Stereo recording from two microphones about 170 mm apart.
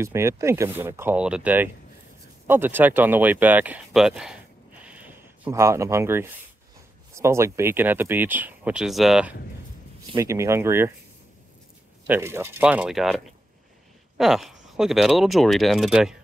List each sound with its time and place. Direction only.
0.0 s speech: 15° right (ahead or behind)
4.8 s a sound: 10° right (ahead or behind)
7.2 s speech: 15° right (ahead or behind)
10.1 s speech: 15° right (ahead or behind)
12.1 s speech: 15° right (ahead or behind)